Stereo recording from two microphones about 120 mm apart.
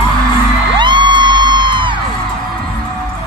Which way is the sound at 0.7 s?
40° right (ahead or behind).